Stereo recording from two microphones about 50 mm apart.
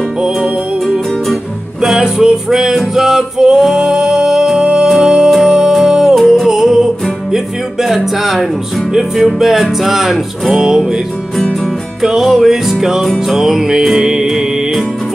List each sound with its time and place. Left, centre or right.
1.8 s music: centre
6.1 s music: centre
7.9 s music: centre
12.0 s music: centre